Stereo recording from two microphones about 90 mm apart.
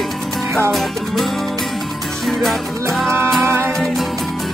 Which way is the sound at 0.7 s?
Centre (ahead or behind).